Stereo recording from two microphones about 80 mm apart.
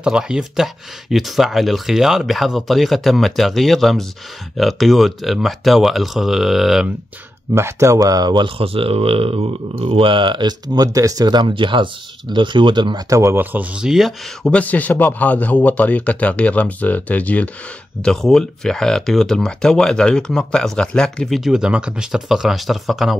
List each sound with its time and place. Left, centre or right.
0.0 s speech: centre
7.5 s speech: right
9.8 s speech: right
13.1 s speech: right
13.4 s speech: right
13.7 s speech: centre
14.4 s speech: centre
18.0 s speech: centre
21.4 s speech: centre